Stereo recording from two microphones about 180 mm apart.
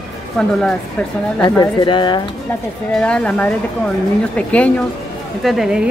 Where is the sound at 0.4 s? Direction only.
5° left (ahead or behind).